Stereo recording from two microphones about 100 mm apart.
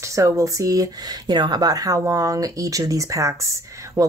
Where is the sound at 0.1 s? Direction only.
30° right (ahead or behind).